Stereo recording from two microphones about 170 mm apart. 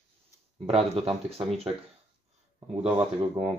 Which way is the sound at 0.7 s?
35° right (ahead or behind).